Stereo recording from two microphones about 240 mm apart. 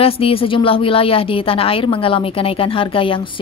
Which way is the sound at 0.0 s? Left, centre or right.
Left.